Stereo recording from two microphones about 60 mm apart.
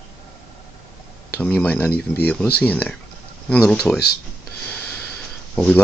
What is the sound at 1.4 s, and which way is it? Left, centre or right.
Speech, left.